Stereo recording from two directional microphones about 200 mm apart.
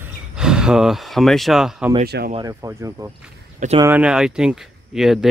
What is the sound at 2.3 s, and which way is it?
Speech, 15° right (ahead or behind).